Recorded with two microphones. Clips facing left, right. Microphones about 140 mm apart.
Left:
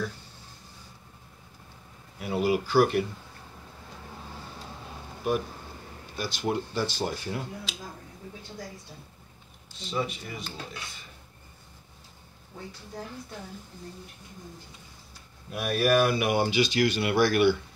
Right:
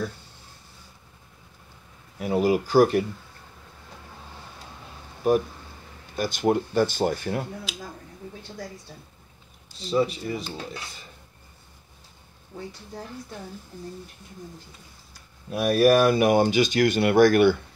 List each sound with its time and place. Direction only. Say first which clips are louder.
2.1 s speech: right 4 dB; 45° right (ahead or behind)
6.1 s speech: right 7 dB; 50° right (ahead or behind)
9.8 s speech: right 8 dB; 35° right (ahead or behind)
15.5 s speech: right 6 dB; 40° right (ahead or behind)